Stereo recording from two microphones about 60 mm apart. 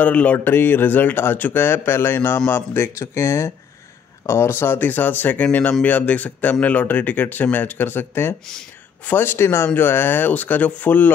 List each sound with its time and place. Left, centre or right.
0.0 s speech: left
0.4 s speech: left
3.0 s speech: left